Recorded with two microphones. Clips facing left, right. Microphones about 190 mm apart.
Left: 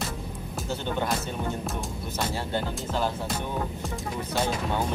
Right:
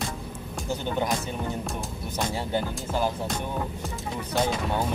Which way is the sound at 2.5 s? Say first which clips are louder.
Right 1 dB; 10° right (ahead or behind).